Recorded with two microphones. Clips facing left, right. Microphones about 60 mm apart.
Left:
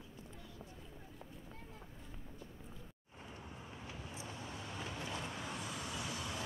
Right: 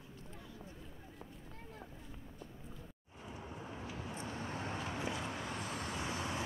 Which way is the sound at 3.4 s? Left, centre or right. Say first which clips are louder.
Right 6 dB; right.